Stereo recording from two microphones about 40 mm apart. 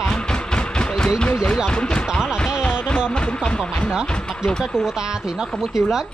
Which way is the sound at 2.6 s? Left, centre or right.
Left.